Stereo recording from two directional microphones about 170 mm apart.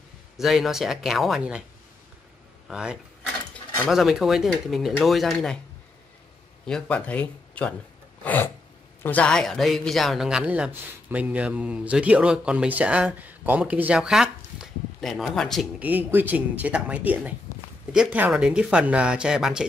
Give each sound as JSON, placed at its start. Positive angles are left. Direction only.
{"t": 0.4, "sound": "speech", "side_deg": 0}
{"t": 2.7, "sound": "speech", "side_deg": -5}
{"t": 6.6, "sound": "speech", "side_deg": 5}
{"t": 8.2, "sound": "a sound", "side_deg": 10}
{"t": 9.0, "sound": "speech", "side_deg": 10}
{"t": 15.8, "sound": "speech", "side_deg": -10}
{"t": 17.5, "sound": "a sound", "side_deg": 15}
{"t": 17.9, "sound": "speech", "side_deg": -5}